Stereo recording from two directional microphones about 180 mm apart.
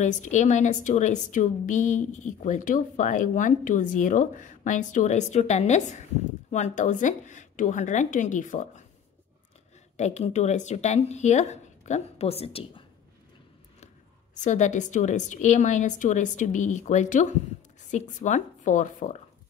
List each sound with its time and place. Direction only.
0.0 s a woman's voice: 40° left (ahead or behind)
9.9 s speech: 40° left (ahead or behind)
14.4 s a woman's voice: 40° left (ahead or behind)